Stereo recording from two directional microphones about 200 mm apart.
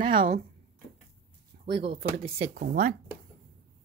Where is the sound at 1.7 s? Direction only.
60° right (ahead or behind).